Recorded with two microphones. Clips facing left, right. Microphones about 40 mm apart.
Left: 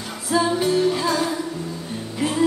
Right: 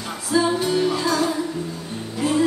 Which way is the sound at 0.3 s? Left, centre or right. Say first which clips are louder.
Even; centre.